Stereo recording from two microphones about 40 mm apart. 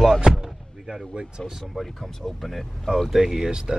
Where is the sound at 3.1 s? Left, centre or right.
Centre.